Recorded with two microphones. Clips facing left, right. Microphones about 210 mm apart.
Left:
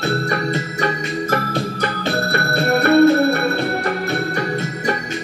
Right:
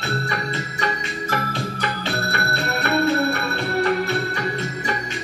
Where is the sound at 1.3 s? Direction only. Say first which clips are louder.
Left 3 dB; 40° left (ahead or behind).